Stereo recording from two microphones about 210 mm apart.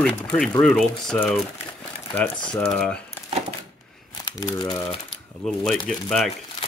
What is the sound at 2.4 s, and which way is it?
Speech, 5° left (ahead or behind).